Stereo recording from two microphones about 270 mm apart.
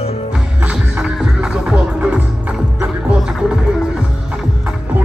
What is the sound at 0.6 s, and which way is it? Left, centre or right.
Music, centre.